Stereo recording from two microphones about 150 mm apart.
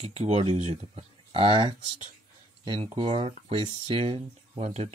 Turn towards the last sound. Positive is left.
turn(degrees=-50)  # may be behind; listen again after turning